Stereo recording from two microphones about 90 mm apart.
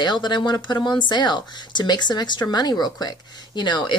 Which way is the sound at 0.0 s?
55° left (ahead or behind).